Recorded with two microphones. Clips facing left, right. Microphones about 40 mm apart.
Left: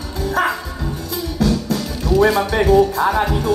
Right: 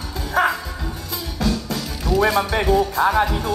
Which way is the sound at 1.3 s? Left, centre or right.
Right.